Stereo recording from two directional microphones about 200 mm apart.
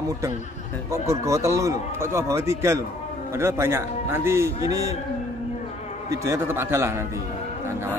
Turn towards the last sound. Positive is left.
turn(degrees=-10)  # may be behind; listen again after turning